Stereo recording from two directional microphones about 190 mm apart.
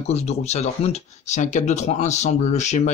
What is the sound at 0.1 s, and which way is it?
Speech, 35° left (ahead or behind).